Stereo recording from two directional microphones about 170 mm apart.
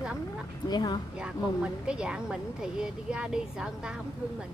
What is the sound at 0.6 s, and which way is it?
Speech, 25° left (ahead or behind).